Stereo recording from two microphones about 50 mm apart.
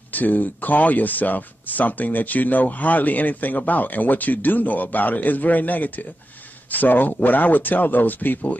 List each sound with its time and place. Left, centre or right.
0.1 s speech: left